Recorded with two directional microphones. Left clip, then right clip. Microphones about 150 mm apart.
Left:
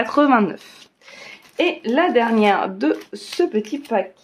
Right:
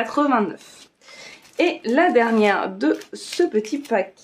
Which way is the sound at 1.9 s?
5° left (ahead or behind).